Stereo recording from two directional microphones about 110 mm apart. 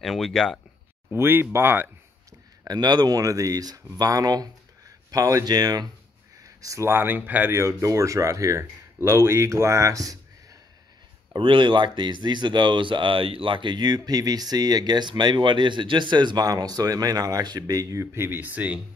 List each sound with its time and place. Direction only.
0.0 s speech: centre (ahead or behind)
1.1 s speech: 20° right (ahead or behind)
2.6 s speech: 40° right (ahead or behind)
11.3 s speech: 50° right (ahead or behind); by 18.8 s 15° right (ahead or behind)